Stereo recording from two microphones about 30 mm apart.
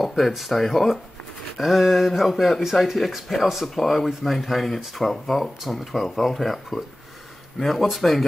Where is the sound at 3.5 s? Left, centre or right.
Centre.